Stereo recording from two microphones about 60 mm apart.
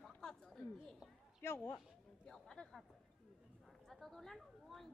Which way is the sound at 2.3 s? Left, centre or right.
Centre.